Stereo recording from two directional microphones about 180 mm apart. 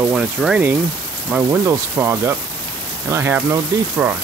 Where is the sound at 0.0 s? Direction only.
5° right (ahead or behind).